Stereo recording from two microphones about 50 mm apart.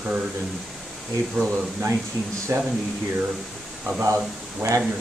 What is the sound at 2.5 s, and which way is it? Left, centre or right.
Speech, right.